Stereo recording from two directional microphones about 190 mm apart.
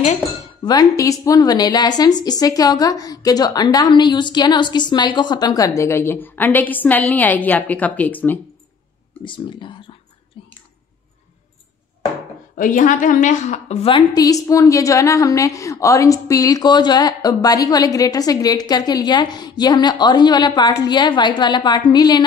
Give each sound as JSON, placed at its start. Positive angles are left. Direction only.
{"t": 0.7, "sound": "a woman's voice", "side_deg": 20}
{"t": 9.2, "sound": "a woman's voice", "side_deg": 25}
{"t": 10.4, "sound": "a sound", "side_deg": 30}
{"t": 12.5, "sound": "a woman's voice", "side_deg": 45}